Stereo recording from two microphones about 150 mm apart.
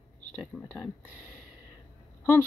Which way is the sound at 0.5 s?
Centre (ahead or behind).